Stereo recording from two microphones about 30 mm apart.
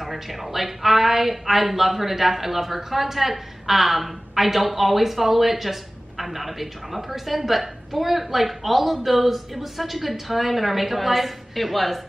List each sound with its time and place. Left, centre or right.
0.0 s speech: centre